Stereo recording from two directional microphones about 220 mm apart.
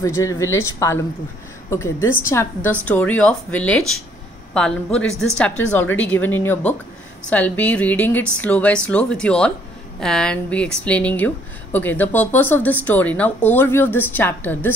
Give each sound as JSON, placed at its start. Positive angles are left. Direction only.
{"t": 0.0, "sound": "speech", "side_deg": 15}